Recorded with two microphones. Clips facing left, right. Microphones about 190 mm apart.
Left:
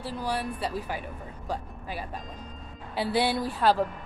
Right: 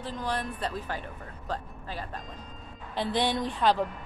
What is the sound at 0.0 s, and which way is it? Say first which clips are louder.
Speech: left 2 dB; 10° left (ahead or behind).